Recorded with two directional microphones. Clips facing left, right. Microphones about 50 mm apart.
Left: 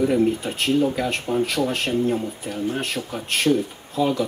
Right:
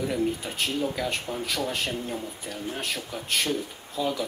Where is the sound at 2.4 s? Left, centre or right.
Left.